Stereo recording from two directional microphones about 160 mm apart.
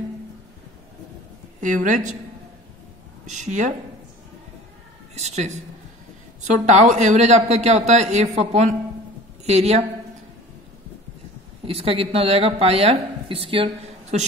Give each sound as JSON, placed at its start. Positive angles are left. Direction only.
{"t": 1.6, "sound": "a man's voice", "side_deg": -55}
{"t": 3.3, "sound": "a man's voice", "side_deg": -50}
{"t": 5.1, "sound": "a man's voice", "side_deg": -45}
{"t": 11.6, "sound": "a woman's voice", "side_deg": -35}